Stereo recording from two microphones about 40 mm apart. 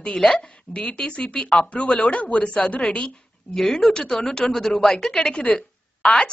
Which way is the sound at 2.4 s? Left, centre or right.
Centre.